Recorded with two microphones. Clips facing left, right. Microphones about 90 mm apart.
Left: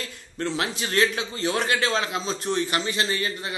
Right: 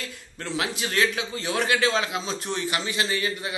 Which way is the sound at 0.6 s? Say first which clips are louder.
Even; 10° right (ahead or behind).